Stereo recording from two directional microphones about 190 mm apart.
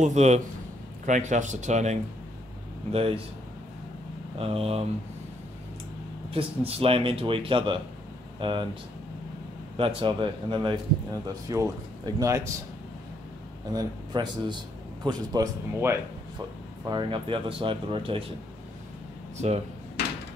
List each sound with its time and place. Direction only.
0.0 s speech: 35° right (ahead or behind)
4.4 s speech: 30° right (ahead or behind)
6.3 s speech: 30° right (ahead or behind)
9.8 s speech: 30° right (ahead or behind)
13.7 s speech: 20° right (ahead or behind)